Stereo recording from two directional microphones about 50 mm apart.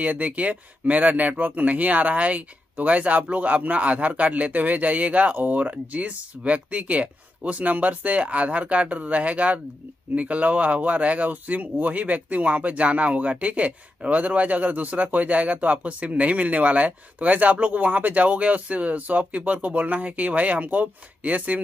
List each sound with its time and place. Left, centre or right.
0.0 s speech: right